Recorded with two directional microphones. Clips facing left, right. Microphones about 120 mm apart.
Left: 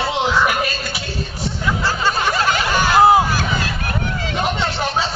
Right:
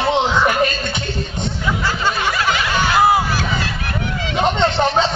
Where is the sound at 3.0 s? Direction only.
20° left (ahead or behind).